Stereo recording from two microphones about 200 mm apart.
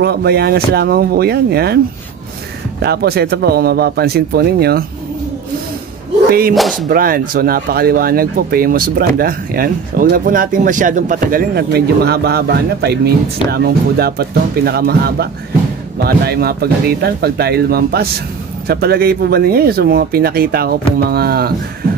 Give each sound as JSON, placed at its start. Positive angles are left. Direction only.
{"t": 0.0, "sound": "speech", "side_deg": -55}
{"t": 2.8, "sound": "speech", "side_deg": -55}
{"t": 6.5, "sound": "speech", "side_deg": 0}
{"t": 6.9, "sound": "speech", "side_deg": -45}